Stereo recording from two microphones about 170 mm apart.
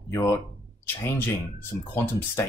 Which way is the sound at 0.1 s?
15° left (ahead or behind).